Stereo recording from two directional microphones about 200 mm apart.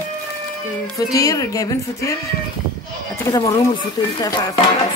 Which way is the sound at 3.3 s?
15° left (ahead or behind).